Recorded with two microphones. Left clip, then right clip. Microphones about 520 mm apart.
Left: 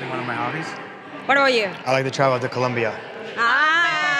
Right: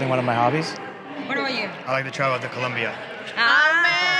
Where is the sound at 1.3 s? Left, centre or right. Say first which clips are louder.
Left 9 dB; left.